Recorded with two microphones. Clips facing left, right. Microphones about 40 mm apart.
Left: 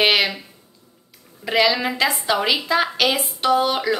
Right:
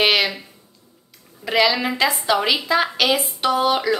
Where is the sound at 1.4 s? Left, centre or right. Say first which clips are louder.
Even; centre.